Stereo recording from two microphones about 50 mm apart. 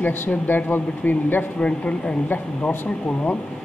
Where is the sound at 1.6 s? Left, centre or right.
Left.